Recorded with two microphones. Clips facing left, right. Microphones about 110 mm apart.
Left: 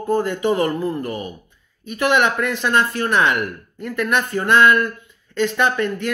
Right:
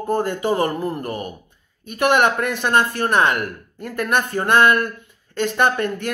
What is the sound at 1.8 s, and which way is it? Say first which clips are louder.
Speech: right 1 dB; 50° right (ahead or behind).